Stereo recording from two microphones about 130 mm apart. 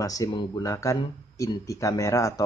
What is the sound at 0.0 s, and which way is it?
Speech, 25° left (ahead or behind).